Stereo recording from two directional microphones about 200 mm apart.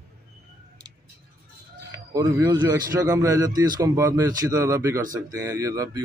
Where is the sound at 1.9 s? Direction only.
20° right (ahead or behind).